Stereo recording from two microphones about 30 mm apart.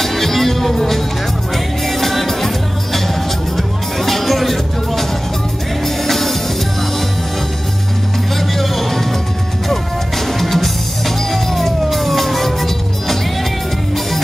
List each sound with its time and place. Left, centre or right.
0.0 s music: centre
6.0 s music: centre
8.4 s music: centre